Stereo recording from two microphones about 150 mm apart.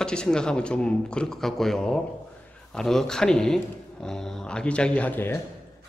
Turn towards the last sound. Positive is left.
turn(degrees=15)  # may be behind; listen again after turning